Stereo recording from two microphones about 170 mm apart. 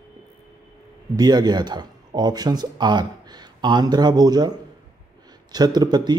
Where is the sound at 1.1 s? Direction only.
25° right (ahead or behind).